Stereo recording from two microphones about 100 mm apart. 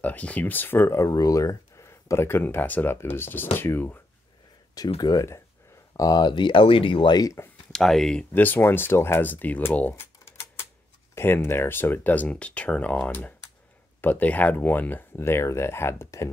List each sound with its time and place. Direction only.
0.0 s speech: 15° left (ahead or behind)
5.0 s speech: 35° left (ahead or behind); by 7.2 s 60° left (ahead or behind)
7.4 s speech: 25° left (ahead or behind)
7.7 s speech: 5° left (ahead or behind)
8.3 s speech: 20° left (ahead or behind)
10.2 s typewriter: 25° left (ahead or behind)
11.1 s speech: 25° left (ahead or behind)